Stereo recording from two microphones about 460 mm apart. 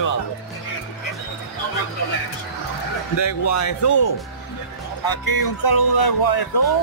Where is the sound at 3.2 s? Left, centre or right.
Left.